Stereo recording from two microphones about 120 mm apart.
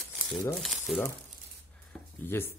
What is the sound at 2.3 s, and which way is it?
Speech, 20° left (ahead or behind).